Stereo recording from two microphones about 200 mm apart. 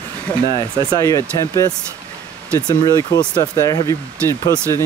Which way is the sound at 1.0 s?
15° left (ahead or behind).